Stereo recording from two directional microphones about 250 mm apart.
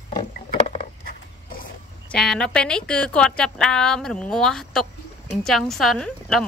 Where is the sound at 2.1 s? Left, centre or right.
Centre.